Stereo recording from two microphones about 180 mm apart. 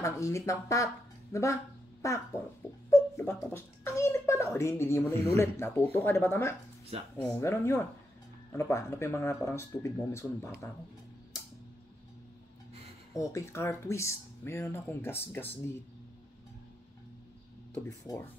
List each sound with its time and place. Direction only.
0.0 s speech: 15° left (ahead or behind)
1.3 s a sound: 15° left (ahead or behind)
2.9 s a child's voice: 15° left (ahead or behind)
13.1 s speech: 15° left (ahead or behind)
17.8 s speech: 15° left (ahead or behind)